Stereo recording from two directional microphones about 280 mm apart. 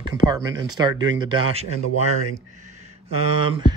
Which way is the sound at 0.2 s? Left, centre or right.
Centre.